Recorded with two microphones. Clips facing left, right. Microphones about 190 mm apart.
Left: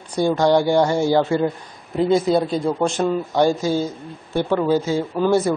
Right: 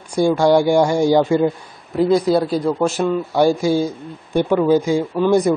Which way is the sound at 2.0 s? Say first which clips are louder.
Right 2 dB; centre (ahead or behind).